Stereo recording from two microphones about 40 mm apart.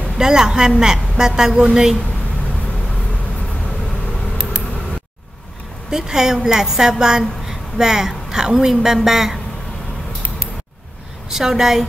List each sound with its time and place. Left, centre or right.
0.2 s a woman's voice: centre
5.9 s a woman's voice: centre
11.2 s a woman's voice: centre